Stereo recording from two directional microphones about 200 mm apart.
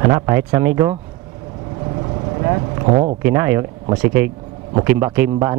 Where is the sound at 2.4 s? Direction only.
25° right (ahead or behind).